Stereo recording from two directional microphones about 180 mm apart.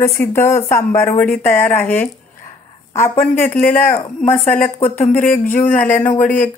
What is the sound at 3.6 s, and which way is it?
Speech, 45° left (ahead or behind).